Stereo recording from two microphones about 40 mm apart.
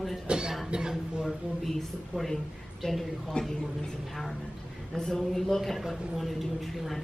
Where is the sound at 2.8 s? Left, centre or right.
Centre.